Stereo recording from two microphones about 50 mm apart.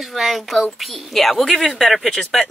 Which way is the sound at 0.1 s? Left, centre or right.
Centre.